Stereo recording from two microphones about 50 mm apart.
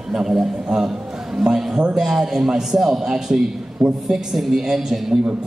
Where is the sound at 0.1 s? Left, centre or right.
Centre.